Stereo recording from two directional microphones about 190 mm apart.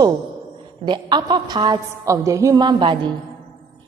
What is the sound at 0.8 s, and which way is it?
A woman's voice, 25° right (ahead or behind).